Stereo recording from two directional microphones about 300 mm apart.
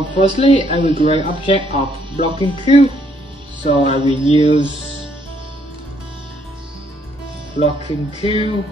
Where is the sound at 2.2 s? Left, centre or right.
Centre.